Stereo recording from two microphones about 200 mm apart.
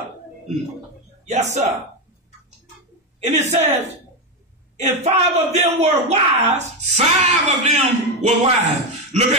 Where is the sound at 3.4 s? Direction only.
35° right (ahead or behind).